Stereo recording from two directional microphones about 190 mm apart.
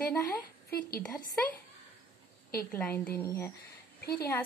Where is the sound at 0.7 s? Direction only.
50° left (ahead or behind).